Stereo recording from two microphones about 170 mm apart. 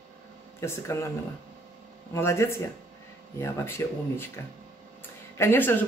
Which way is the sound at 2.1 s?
15° left (ahead or behind).